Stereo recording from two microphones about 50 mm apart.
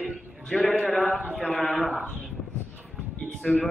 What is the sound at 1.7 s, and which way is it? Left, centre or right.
Speech, centre.